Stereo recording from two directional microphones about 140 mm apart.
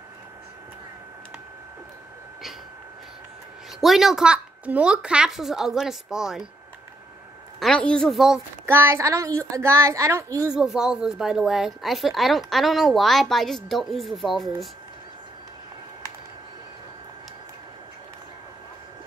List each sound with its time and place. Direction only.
3.8 s a woman's voice: centre (ahead or behind)
7.6 s a woman's voice: 5° left (ahead or behind)
8.6 s a woman's voice: 15° right (ahead or behind)
10.5 s a woman's voice: 5° right (ahead or behind)